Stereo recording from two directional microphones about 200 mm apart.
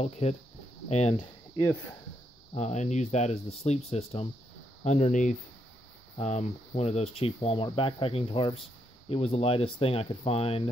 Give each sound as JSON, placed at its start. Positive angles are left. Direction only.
{"t": 0.0, "sound": "speech", "side_deg": 35}
{"t": 2.5, "sound": "speech", "side_deg": 35}